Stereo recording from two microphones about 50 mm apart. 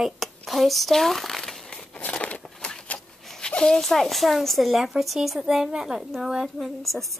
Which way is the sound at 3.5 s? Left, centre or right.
Centre.